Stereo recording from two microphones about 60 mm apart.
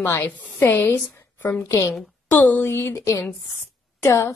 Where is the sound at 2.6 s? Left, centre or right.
Left.